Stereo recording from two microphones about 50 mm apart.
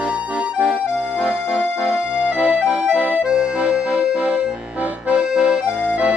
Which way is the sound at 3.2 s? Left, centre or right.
Centre.